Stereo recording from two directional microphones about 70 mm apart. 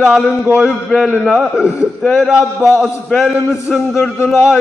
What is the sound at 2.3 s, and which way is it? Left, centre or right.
Speech, centre.